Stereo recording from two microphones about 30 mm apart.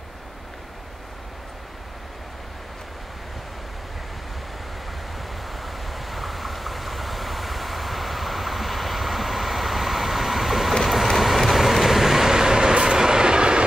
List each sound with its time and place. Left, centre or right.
5.5 s vehicle: centre; by 13.7 s right